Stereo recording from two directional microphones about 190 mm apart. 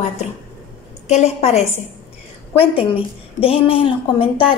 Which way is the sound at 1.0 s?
35° left (ahead or behind).